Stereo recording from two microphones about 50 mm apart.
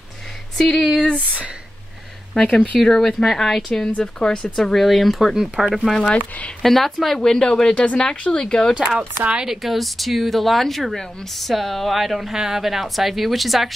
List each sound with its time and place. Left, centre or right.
0.6 s speech: centre
1.0 s a sound: centre
2.4 s speech: left
2.8 s speech: centre
4.6 s speech: centre
5.9 s speech: centre
6.6 s speech: centre
7.2 s speech: centre
8.7 s speech: centre
9.4 s speech: centre